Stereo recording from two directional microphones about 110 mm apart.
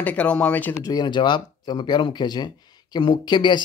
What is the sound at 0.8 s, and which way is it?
Speech, 40° left (ahead or behind).